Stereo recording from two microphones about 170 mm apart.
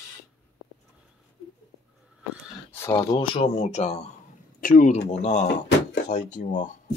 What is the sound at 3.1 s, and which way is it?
Speech, 30° left (ahead or behind).